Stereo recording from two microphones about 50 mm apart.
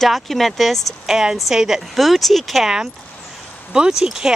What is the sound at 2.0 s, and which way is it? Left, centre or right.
Speech, centre.